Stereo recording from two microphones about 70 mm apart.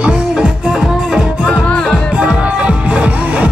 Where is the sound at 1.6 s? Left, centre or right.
Centre.